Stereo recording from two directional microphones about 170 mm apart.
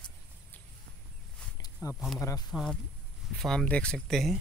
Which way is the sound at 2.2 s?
20° left (ahead or behind).